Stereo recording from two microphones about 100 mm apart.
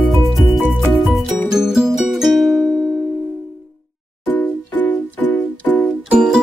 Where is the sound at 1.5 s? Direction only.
5° right (ahead or behind).